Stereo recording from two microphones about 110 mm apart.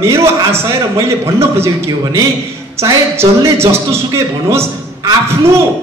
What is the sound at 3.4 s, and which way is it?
A man's voice, 25° right (ahead or behind).